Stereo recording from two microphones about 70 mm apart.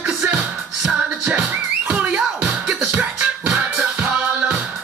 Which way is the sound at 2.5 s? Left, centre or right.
Centre.